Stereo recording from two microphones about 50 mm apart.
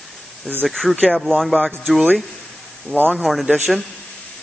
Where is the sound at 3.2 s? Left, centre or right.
Centre.